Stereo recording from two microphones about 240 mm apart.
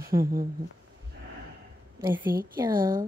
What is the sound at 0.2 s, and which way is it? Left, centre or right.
Speech, right.